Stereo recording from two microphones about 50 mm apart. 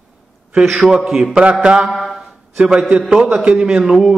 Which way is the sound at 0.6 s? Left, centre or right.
Centre.